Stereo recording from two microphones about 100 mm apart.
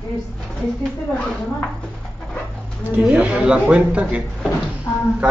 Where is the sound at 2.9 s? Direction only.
15° right (ahead or behind).